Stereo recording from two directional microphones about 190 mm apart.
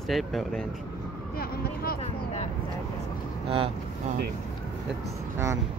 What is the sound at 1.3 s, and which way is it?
Vehicle, 50° left (ahead or behind).